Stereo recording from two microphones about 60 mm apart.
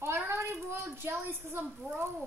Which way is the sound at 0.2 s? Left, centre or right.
Right.